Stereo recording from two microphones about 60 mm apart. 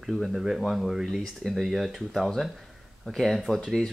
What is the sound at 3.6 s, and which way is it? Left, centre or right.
Speech, centre.